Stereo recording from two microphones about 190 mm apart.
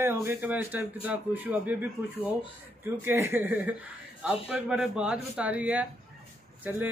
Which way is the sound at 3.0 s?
10° right (ahead or behind).